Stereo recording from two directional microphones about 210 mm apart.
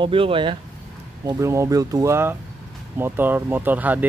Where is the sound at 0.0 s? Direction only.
25° right (ahead or behind).